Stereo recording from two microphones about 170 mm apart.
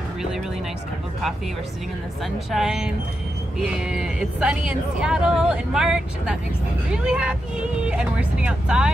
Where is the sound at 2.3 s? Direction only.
Centre (ahead or behind).